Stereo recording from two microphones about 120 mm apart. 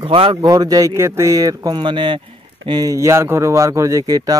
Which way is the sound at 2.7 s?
30° right (ahead or behind).